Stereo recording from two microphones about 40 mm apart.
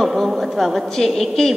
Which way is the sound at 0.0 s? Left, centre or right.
Centre.